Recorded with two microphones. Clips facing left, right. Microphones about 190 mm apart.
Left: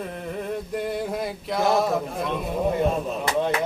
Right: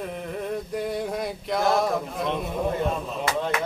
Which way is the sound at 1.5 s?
Centre (ahead or behind).